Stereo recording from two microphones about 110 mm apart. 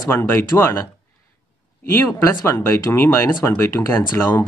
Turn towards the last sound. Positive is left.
turn(degrees=20)  # may be behind; listen again after turning